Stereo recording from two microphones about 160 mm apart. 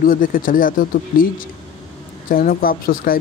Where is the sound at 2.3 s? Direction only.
65° left (ahead or behind).